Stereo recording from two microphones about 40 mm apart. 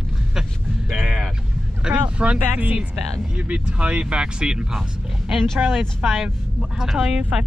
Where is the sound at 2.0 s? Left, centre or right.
Right.